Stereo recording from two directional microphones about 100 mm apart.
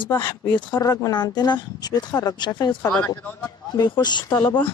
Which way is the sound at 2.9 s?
10° left (ahead or behind).